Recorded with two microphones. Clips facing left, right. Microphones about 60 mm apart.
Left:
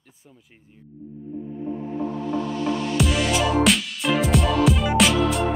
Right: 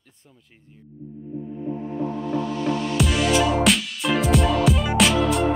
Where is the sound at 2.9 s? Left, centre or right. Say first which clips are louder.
Right 2 dB; centre.